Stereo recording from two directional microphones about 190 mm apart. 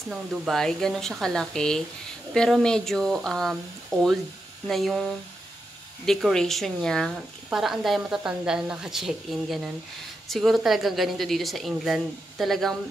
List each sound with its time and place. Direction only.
0.1 s speech: centre (ahead or behind)